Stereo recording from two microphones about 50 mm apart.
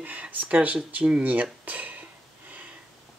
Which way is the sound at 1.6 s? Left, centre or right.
Right.